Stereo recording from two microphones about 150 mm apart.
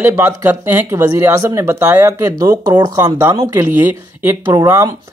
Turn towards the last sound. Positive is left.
turn(degrees=-20)  # may be behind; listen again after turning